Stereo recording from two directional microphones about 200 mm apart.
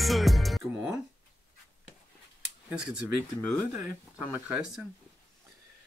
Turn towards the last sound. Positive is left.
turn(degrees=-5)  # may be behind; listen again after turning